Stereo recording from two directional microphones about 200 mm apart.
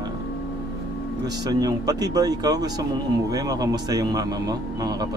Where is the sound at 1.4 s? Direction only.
20° right (ahead or behind).